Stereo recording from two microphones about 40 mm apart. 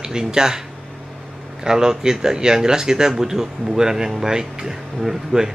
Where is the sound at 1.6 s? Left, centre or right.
Centre.